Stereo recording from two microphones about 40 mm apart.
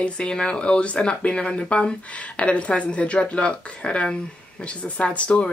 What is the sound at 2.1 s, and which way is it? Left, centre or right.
Speech, left.